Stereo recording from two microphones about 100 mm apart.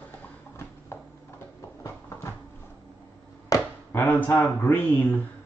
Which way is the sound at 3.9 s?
20° left (ahead or behind).